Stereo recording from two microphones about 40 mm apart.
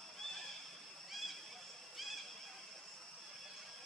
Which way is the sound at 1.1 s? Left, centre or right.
Centre.